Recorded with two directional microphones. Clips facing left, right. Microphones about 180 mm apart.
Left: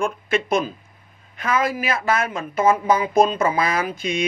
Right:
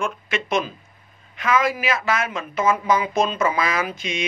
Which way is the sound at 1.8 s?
50° left (ahead or behind).